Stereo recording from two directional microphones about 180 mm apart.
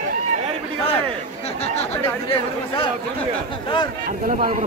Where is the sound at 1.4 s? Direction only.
35° left (ahead or behind).